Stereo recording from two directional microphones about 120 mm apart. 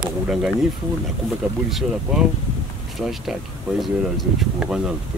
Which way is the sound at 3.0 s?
Centre (ahead or behind).